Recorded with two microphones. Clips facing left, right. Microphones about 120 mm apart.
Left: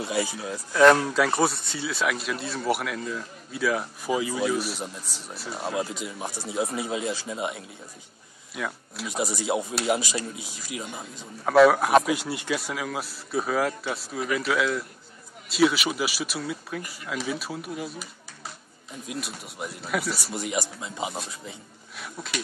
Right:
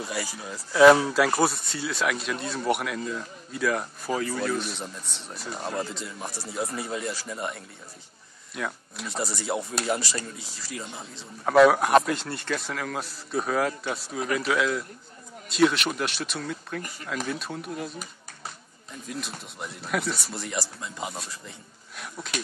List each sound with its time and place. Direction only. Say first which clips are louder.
0.0 s speech: left 5 dB; 20° left (ahead or behind)
0.4 s speech: right 2 dB; centre (ahead or behind)
8.5 s speech: even; centre (ahead or behind)
9.1 s speech: left 3 dB; 15° left (ahead or behind)
11.4 s speech: even; centre (ahead or behind)
19.0 s speech: left 1 dB; 5° left (ahead or behind)
20.4 s speech: left 3 dB; 15° left (ahead or behind)
21.9 s speech: even; centre (ahead or behind)